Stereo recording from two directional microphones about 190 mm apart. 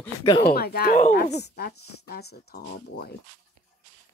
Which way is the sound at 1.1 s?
60° left (ahead or behind).